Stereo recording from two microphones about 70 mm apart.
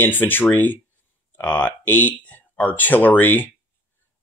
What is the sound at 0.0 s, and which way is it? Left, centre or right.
Speech, left.